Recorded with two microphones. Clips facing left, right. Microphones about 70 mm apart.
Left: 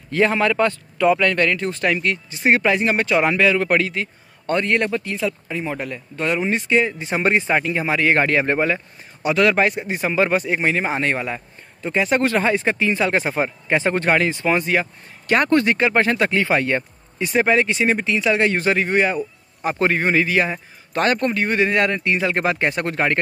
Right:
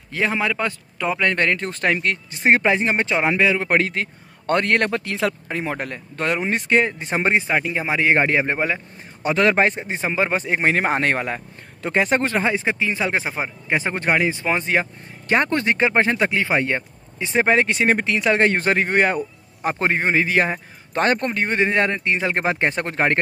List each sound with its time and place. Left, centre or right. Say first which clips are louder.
0.1 s speech: left 4 dB; centre; by 1.7 s right
1.7 s speech: left 1 dB; right
2.6 s speech: left 1 dB; right
3.7 s speech: even; right
5.0 s speech: right 1 dB; right
5.5 s speech: even; right
7.2 s speech: left 1 dB; right
9.2 s speech: left 1 dB; right
12.2 s speech: left 3 dB; right
13.2 s speech: left 5 dB; centre
17.6 s speech: even; right
19.7 s speech: left 2 dB; right